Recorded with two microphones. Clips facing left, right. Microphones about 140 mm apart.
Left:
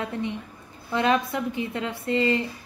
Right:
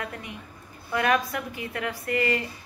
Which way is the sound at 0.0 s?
25° left (ahead or behind).